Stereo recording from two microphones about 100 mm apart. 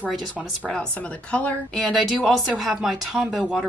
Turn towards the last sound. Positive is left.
turn(degrees=0)  # may be behind; listen again after turning